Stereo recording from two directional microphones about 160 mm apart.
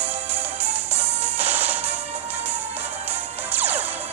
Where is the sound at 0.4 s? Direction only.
10° right (ahead or behind).